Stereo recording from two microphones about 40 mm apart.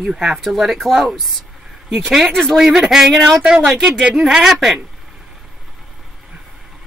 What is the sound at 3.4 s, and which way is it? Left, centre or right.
Speech, centre.